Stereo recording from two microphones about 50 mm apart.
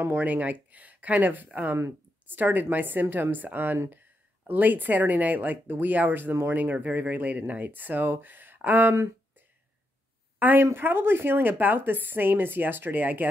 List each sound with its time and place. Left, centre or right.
0.1 s speech: right
10.4 s speech: right